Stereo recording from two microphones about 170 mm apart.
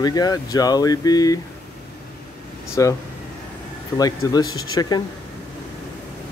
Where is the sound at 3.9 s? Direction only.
20° left (ahead or behind).